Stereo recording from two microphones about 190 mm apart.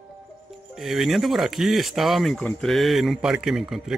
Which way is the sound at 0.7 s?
Centre (ahead or behind).